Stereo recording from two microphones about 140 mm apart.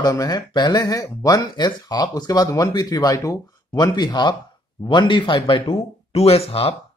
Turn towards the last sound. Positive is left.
turn(degrees=45)  # may be behind; listen again after turning